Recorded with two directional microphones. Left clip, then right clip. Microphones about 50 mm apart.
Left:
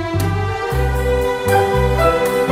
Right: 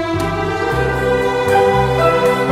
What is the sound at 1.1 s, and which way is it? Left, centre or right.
Music, right.